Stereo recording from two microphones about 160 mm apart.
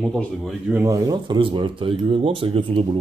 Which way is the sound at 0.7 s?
20° right (ahead or behind).